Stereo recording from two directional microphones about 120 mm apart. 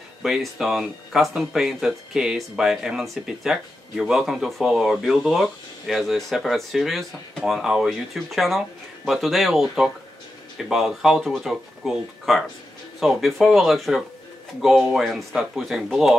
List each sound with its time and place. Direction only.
0.2 s speech: 5° right (ahead or behind)